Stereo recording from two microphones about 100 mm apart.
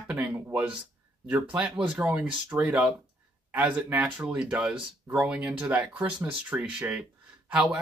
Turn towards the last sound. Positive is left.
turn(degrees=-10)  # may be behind; listen again after turning